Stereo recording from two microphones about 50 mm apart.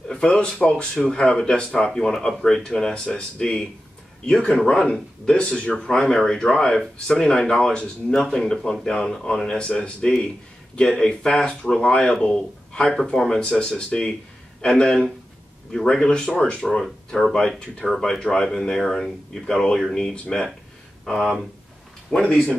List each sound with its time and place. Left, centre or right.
0.1 s speech: centre
21.0 s speech: centre
22.1 s speech: centre